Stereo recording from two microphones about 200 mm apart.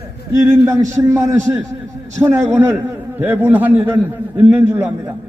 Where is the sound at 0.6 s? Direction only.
15° right (ahead or behind).